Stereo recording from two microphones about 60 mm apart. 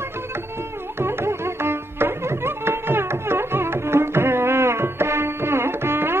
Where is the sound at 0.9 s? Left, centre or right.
Right.